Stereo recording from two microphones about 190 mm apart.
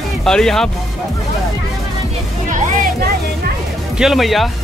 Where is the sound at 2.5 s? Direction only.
50° right (ahead or behind).